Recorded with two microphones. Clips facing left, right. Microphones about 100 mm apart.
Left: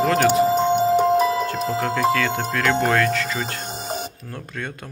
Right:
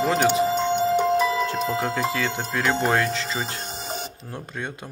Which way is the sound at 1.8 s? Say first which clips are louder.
Left 4 dB; 20° right (ahead or behind).